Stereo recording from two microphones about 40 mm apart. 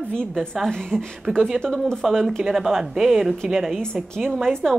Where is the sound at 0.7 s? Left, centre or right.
Centre.